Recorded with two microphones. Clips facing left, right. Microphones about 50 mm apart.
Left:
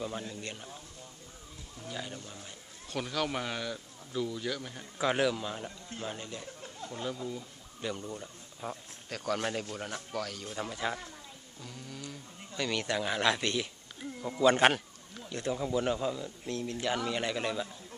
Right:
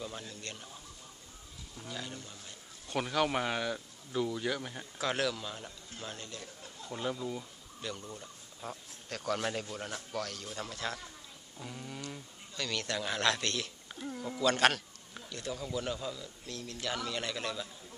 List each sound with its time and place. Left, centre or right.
0.0 s speech: centre
1.9 s speech: centre
2.9 s speech: centre
4.9 s speech: centre
6.9 s speech: centre
7.8 s speech: centre
11.6 s speech: centre
12.5 s speech: centre
14.4 s a man's voice: left